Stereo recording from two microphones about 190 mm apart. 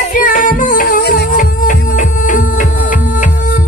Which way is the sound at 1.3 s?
45° left (ahead or behind).